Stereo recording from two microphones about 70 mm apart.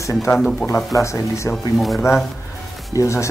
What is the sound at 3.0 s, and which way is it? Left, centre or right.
Speech, left.